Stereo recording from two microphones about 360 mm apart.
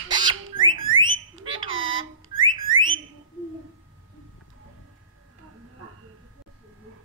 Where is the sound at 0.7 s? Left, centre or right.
Right.